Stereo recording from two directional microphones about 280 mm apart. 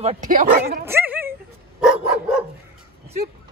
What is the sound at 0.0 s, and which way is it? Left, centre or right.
Speech, right.